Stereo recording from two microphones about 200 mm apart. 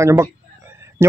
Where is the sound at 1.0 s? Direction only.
10° right (ahead or behind).